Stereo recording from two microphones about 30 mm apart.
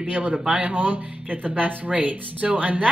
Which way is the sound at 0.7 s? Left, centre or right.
Right.